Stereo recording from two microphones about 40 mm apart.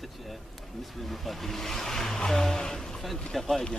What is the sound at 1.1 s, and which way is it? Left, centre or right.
Speech, centre.